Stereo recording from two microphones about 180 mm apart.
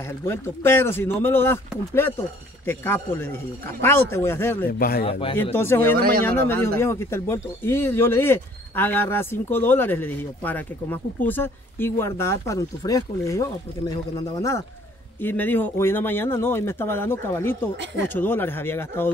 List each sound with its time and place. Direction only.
0.2 s speech: 15° left (ahead or behind)
4.6 s speech: 55° left (ahead or behind)
5.6 s speech: 10° left (ahead or behind)